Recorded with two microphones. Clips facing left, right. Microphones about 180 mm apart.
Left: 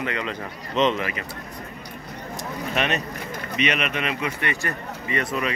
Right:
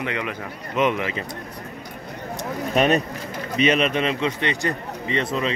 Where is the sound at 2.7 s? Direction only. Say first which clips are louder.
Right 7 dB; 40° right (ahead or behind).